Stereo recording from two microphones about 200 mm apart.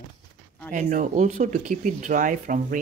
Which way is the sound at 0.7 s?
40° right (ahead or behind).